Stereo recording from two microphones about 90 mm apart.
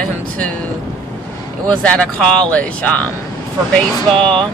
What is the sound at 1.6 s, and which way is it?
Speech, 10° left (ahead or behind).